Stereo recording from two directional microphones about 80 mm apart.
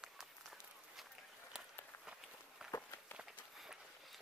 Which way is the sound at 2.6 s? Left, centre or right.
Centre.